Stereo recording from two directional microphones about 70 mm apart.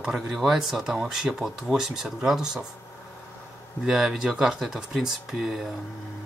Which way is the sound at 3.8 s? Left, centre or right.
Centre.